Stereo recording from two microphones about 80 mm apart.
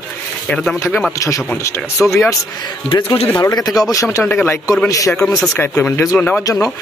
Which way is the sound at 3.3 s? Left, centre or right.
Left.